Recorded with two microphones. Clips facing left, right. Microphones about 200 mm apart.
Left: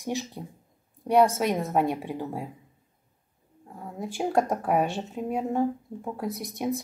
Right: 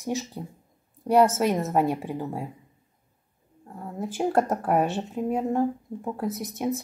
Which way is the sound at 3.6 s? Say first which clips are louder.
Right 2 dB; 5° left (ahead or behind).